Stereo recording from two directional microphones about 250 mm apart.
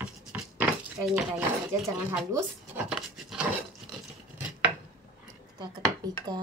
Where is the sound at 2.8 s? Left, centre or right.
Centre.